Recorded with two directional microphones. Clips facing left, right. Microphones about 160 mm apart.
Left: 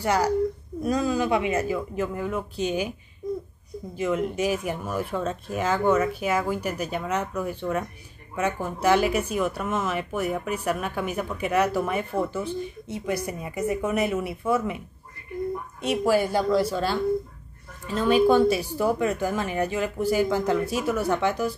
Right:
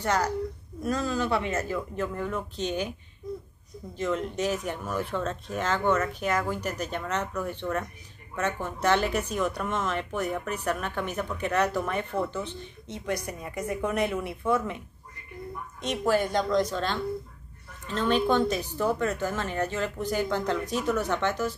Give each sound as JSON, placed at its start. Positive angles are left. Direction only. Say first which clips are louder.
{"t": 0.0, "sound": "speech", "louder": "left 5 dB", "side_deg": 10}
{"t": 3.9, "sound": "speech", "louder": "left 3 dB", "side_deg": 10}
{"t": 15.8, "sound": "speech", "louder": "left 3 dB", "side_deg": 10}